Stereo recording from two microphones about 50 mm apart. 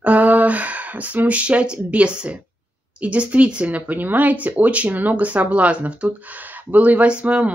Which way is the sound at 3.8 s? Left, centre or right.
Right.